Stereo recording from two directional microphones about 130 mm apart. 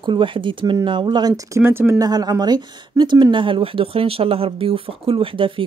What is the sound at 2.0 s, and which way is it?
Speech, 30° right (ahead or behind).